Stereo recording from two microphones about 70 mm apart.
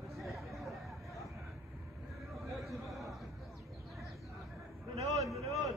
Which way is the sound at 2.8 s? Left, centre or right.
Centre.